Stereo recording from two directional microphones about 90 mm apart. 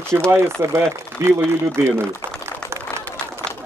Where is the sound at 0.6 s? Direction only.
30° right (ahead or behind).